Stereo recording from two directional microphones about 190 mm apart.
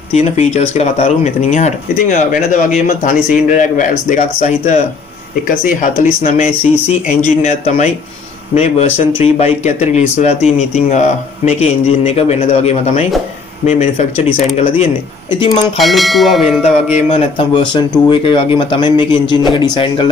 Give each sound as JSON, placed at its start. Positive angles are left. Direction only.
{"t": 0.1, "sound": "speech", "side_deg": 35}
{"t": 15.8, "sound": "church bell", "side_deg": 0}
{"t": 17.1, "sound": "speech", "side_deg": 30}